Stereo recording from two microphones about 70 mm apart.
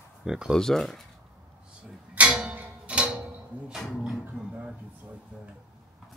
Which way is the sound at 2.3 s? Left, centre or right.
Centre.